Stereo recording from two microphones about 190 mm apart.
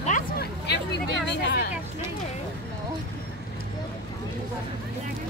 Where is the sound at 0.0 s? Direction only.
45° left (ahead or behind); by 1.7 s 60° left (ahead or behind).